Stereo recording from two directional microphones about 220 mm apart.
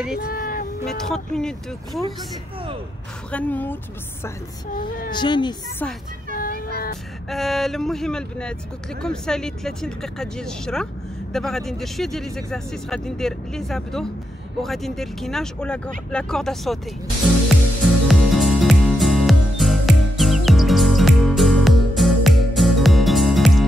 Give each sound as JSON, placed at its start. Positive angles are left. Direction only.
{"t": 0.3, "sound": "a sound", "side_deg": 40}
{"t": 0.8, "sound": "speech", "side_deg": 0}
{"t": 3.3, "sound": "a woman's voice", "side_deg": 5}
{"t": 5.1, "sound": "speech", "side_deg": 20}
{"t": 6.3, "sound": "child singing", "side_deg": 40}
{"t": 7.2, "sound": "speech", "side_deg": 0}
{"t": 17.8, "sound": "music", "side_deg": 0}